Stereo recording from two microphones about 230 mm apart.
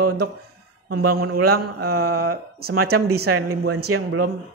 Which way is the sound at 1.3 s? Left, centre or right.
Right.